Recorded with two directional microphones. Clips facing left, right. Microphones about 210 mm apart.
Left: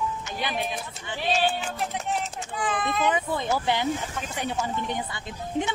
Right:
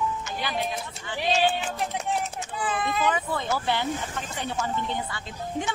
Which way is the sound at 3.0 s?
20° left (ahead or behind).